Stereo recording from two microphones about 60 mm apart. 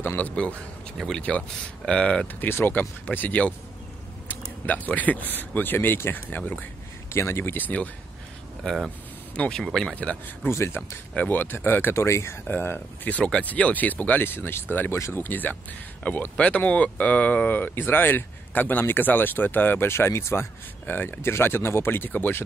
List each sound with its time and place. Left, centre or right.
0.0 s speech: left
0.9 s speech: centre
2.4 s speech: left
7.1 s speech: left
9.3 s speech: centre
9.6 s speech: centre
9.8 s speech: left
10.5 s speech: left
11.1 s speech: left
15.2 s speech: left
19.9 s speech: left
20.8 s speech: left